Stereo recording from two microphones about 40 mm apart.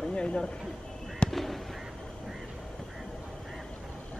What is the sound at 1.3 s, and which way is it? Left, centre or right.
Fireworks, centre.